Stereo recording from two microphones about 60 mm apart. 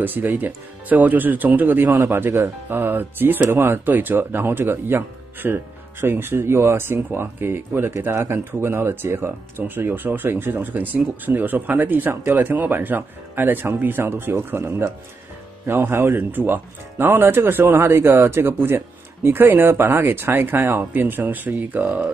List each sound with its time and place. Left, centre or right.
0.0 s speech: right